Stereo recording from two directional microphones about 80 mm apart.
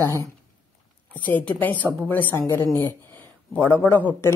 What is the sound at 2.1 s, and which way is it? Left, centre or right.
Speech, left.